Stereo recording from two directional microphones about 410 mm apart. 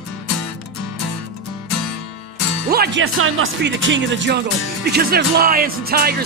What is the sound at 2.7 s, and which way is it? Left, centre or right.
Speech, right.